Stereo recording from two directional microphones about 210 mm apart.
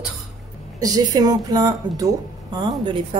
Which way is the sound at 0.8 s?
15° right (ahead or behind).